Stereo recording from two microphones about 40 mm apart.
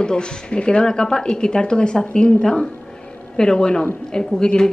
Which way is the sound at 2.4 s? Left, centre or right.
Centre.